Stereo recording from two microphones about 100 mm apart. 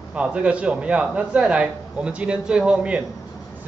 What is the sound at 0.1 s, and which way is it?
A man's voice, 10° right (ahead or behind).